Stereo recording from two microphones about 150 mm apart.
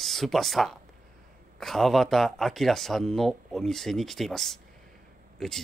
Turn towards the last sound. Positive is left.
turn(degrees=5)  # may be behind; listen again after turning